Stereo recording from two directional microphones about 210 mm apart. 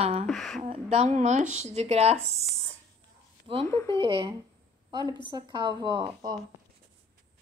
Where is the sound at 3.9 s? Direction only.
25° right (ahead or behind).